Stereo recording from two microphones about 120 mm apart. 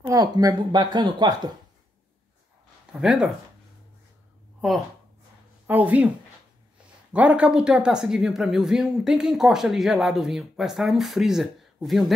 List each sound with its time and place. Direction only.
0.0 s speech: 30° right (ahead or behind)
2.9 s speech: 5° right (ahead or behind)
5.7 s speech: 15° right (ahead or behind)
7.1 s speech: 10° right (ahead or behind)